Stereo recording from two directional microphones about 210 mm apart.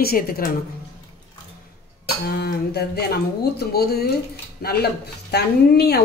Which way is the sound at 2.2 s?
50° left (ahead or behind).